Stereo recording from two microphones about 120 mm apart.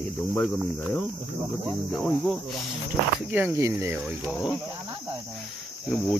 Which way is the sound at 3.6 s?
20° right (ahead or behind).